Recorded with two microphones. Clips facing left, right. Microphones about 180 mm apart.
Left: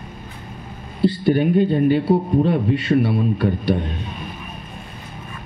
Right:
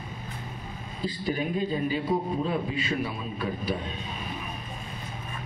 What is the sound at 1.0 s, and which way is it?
Speech, 70° left (ahead or behind).